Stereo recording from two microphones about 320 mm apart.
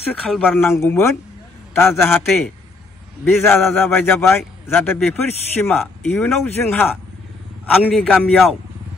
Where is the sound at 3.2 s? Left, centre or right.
Centre.